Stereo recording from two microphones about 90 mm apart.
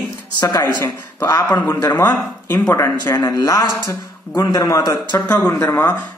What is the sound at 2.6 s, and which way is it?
Speech, 40° left (ahead or behind).